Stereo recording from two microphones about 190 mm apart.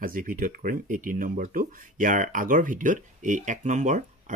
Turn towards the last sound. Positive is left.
turn(degrees=-40)  # may be behind; listen again after turning